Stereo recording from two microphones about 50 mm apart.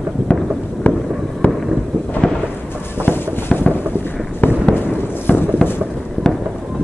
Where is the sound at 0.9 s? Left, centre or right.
Left.